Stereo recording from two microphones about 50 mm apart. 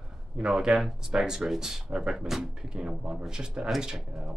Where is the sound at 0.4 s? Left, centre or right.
Centre.